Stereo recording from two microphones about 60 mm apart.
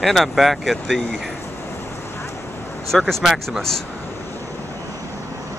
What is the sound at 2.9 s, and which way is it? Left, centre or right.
Speech, centre.